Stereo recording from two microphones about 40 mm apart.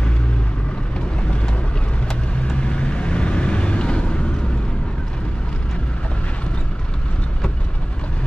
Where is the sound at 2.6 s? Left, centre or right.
Left.